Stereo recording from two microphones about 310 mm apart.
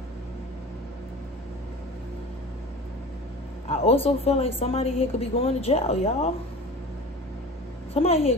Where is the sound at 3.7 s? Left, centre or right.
Centre.